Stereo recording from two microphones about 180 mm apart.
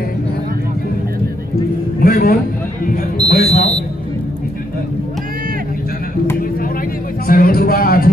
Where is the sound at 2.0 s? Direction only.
55° left (ahead or behind).